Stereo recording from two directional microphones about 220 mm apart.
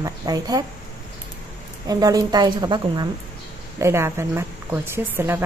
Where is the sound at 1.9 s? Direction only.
15° right (ahead or behind).